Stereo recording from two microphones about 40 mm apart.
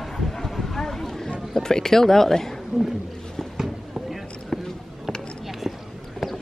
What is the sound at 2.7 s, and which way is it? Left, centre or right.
Speech, centre.